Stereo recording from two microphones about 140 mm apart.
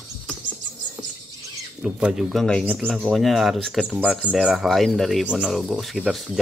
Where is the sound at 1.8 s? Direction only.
5° right (ahead or behind).